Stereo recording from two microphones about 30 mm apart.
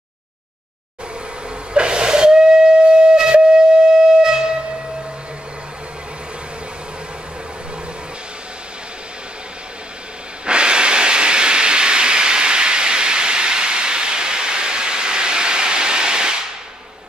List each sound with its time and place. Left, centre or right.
1.7 s train: right
4.2 s a sound: right
10.4 s steam: right